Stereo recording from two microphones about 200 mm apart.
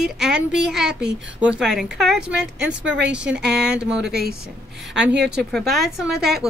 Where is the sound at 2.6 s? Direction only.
65° right (ahead or behind).